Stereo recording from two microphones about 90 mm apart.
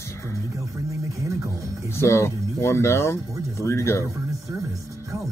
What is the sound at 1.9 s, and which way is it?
Speech, 30° left (ahead or behind).